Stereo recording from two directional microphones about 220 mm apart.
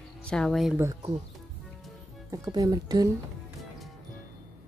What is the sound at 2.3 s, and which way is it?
Speech, 15° right (ahead or behind).